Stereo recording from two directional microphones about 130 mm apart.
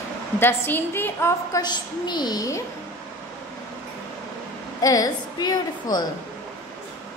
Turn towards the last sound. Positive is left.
turn(degrees=30)  # may be behind; listen again after turning